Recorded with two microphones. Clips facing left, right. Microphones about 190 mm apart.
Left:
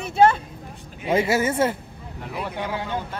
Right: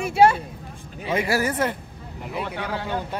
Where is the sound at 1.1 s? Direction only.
25° left (ahead or behind).